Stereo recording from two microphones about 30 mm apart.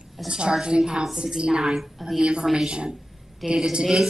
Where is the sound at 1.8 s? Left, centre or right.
Centre.